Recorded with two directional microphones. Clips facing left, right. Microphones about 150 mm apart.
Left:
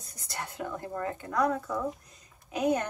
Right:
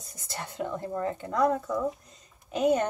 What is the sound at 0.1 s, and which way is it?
Speech, 25° right (ahead or behind).